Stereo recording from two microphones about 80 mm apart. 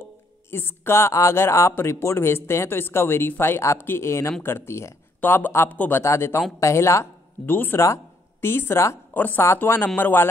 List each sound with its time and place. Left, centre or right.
0.0 s speech: left
9.1 s speech: left